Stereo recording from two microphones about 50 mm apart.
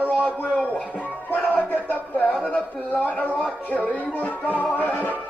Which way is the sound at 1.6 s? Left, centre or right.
Left.